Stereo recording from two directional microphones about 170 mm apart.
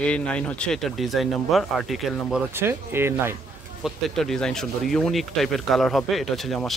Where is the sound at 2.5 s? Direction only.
15° right (ahead or behind).